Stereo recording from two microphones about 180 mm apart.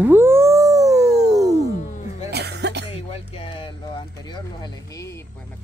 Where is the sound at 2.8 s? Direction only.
35° left (ahead or behind).